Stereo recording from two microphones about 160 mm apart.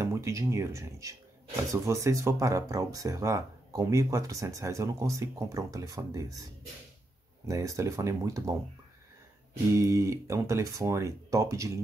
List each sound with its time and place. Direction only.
0.0 s speech: 15° right (ahead or behind)
7.4 s speech: 20° right (ahead or behind)
9.5 s speech: 20° right (ahead or behind)